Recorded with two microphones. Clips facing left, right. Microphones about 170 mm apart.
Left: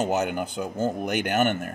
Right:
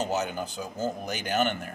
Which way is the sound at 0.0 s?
55° left (ahead or behind).